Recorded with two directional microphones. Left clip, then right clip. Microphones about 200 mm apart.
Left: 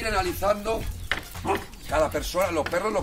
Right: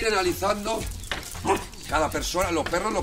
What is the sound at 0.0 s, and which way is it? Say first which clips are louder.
Speech: right 2 dB; 35° left (ahead or behind).